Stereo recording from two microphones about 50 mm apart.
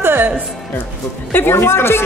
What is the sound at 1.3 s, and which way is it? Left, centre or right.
Speech, left.